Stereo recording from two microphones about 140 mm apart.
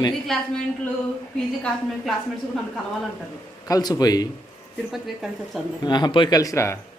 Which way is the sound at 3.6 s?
25° left (ahead or behind).